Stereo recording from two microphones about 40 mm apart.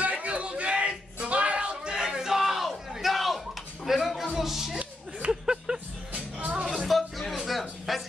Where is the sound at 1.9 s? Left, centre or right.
Centre.